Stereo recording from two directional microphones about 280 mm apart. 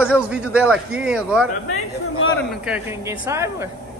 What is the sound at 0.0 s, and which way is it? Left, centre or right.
A man's voice, centre.